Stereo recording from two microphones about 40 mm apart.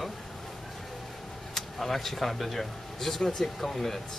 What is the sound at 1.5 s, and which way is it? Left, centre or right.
Speech, centre.